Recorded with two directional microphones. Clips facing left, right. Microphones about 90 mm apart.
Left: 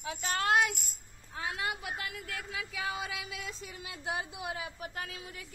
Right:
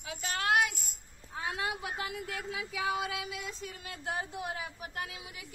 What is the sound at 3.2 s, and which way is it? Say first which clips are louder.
Speech: right 2 dB; centre (ahead or behind).